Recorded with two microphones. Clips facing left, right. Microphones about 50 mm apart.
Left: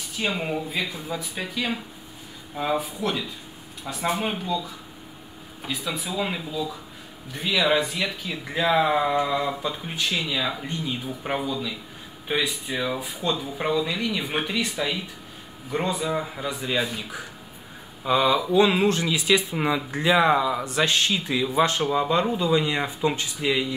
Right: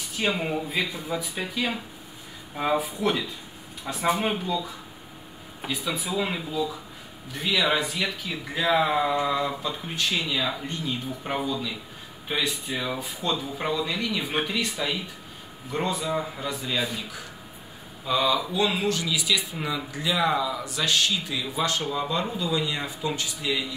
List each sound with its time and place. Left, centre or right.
0.2 s speech: centre; by 23.6 s left